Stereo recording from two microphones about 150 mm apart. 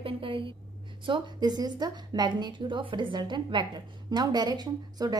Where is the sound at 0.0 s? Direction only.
35° right (ahead or behind).